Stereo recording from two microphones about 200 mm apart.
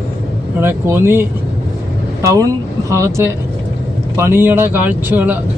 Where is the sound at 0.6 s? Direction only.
10° right (ahead or behind).